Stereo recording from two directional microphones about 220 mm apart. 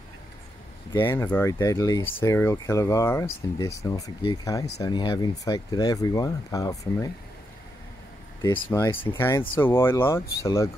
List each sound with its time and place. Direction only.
0.9 s speech: 10° left (ahead or behind)
8.4 s speech: 15° left (ahead or behind)